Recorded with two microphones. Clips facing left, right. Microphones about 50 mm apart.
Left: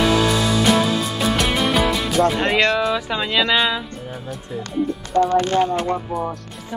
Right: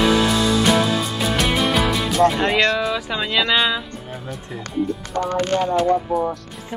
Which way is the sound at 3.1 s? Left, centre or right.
Centre.